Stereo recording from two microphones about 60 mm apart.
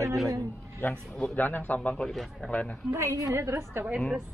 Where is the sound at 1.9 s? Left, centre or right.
Centre.